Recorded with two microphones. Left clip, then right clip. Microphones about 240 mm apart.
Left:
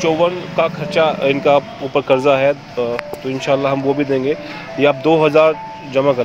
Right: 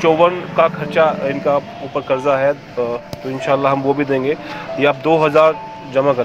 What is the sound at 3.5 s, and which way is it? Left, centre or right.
Speech, centre.